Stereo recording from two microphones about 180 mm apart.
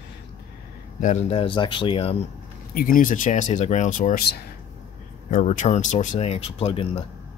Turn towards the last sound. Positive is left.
turn(degrees=35)  # may be behind; listen again after turning